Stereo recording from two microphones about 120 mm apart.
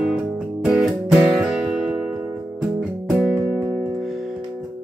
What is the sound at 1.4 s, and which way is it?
Music, 10° right (ahead or behind).